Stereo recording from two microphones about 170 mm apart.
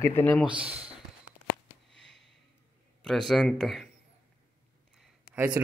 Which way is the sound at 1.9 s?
Centre (ahead or behind).